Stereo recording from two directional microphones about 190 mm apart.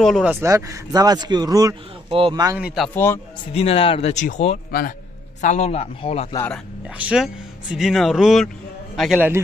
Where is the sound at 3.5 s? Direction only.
30° left (ahead or behind).